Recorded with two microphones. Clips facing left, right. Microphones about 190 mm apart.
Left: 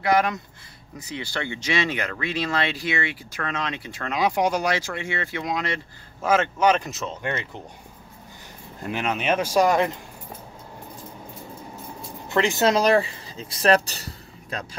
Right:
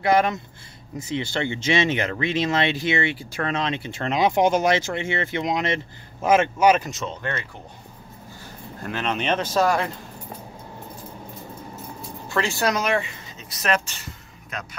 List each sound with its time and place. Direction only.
0.0 s speech: 25° right (ahead or behind); by 6.9 s 10° right (ahead or behind)
6.9 s speech: centre (ahead or behind)
7.2 s speech: 15° left (ahead or behind)
8.8 s speech: 10° left (ahead or behind)
12.3 s speech: 20° left (ahead or behind)
12.7 s speech: 35° left (ahead or behind)